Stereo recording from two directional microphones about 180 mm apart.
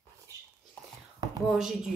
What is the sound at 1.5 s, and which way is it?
Speech, centre (ahead or behind).